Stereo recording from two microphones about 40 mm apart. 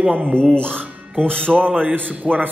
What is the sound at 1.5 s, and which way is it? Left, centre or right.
A man's voice, right.